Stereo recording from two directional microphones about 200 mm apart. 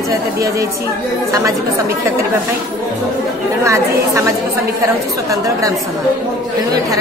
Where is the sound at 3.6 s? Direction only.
15° right (ahead or behind).